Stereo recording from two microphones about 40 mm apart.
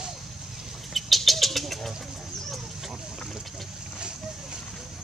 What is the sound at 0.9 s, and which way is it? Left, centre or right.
Bird, centre.